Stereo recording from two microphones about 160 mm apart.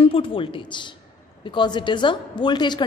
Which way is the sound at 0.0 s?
35° left (ahead or behind).